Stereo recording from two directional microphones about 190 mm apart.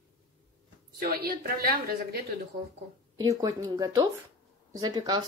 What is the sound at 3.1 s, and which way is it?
Speech, 20° right (ahead or behind).